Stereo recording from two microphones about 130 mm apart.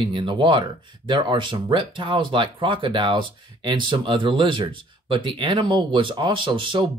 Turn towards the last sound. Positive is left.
turn(degrees=-40)  # may be behind; listen again after turning